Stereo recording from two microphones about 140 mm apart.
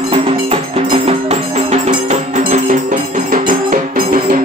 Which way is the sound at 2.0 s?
60° right (ahead or behind).